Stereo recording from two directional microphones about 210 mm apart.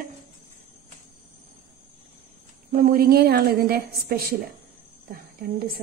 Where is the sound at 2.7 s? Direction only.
45° right (ahead or behind).